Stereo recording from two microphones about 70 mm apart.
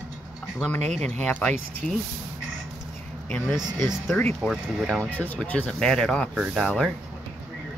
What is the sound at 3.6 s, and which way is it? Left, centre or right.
Speech, right.